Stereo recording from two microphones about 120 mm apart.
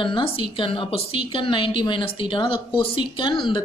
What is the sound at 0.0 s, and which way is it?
Speech, 45° left (ahead or behind).